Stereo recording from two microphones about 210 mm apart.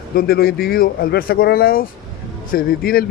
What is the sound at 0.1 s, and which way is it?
A man's voice, 45° left (ahead or behind).